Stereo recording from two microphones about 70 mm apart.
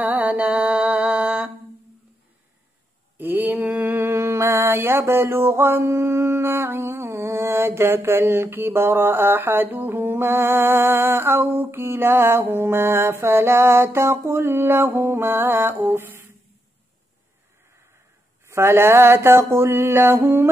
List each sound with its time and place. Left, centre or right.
0.0 s music: right
3.2 s mantra: right
18.5 s mantra: right